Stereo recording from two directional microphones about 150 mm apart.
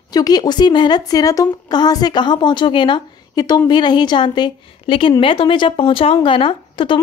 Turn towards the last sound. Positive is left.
turn(degrees=35)  # may be behind; listen again after turning